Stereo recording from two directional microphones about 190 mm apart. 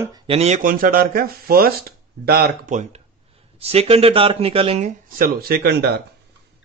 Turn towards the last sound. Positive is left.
turn(degrees=-60)  # may be behind; listen again after turning